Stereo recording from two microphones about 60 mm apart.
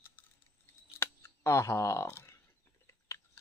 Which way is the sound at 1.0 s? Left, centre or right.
Left.